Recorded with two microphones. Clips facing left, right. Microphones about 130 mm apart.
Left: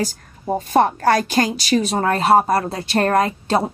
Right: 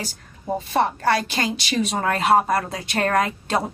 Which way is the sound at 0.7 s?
45° left (ahead or behind).